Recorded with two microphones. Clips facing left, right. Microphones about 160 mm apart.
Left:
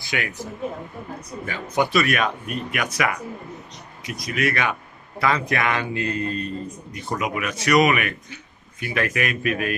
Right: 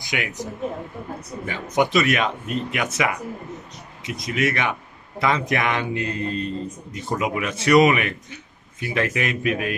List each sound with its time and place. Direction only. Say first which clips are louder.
0.0 s a man's voice: right 1 dB; 20° right (ahead or behind)